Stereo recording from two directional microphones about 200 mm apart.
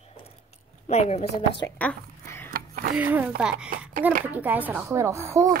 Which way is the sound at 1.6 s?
10° left (ahead or behind).